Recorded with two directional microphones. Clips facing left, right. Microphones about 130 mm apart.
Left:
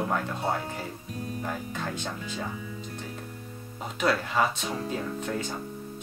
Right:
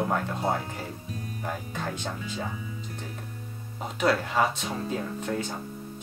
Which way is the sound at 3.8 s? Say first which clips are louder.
Right 2 dB; 30° right (ahead or behind).